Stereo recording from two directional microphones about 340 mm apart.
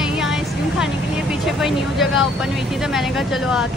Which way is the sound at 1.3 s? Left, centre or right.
Centre.